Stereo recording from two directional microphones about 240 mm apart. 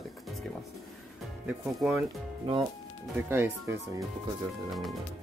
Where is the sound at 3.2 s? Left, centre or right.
Centre.